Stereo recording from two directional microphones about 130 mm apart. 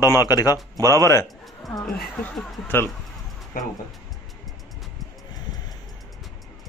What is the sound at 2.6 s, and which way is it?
Speech, 15° left (ahead or behind).